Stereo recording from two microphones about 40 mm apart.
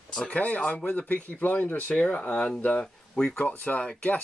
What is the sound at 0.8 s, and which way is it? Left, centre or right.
Speech, left.